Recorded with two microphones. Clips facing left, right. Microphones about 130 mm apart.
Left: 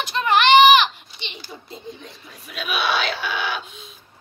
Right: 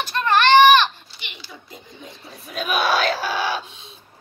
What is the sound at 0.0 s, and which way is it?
Baby cry, 15° left (ahead or behind).